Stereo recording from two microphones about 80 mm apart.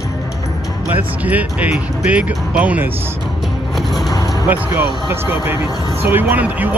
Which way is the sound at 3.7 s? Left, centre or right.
Centre.